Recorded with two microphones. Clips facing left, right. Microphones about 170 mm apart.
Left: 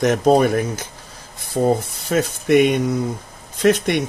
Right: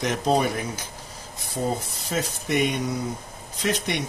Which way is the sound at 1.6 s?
65° left (ahead or behind).